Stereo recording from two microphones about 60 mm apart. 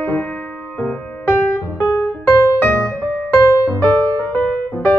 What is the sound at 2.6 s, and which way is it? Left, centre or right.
Music, left.